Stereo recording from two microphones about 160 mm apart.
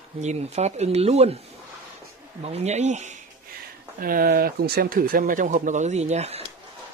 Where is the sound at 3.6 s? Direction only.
65° right (ahead or behind); by 6.4 s 40° right (ahead or behind).